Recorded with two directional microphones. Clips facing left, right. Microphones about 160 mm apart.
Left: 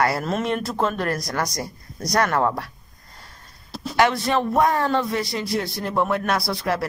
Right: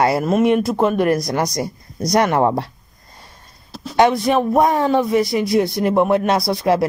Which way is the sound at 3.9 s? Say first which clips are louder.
Right 5 dB; 20° right (ahead or behind).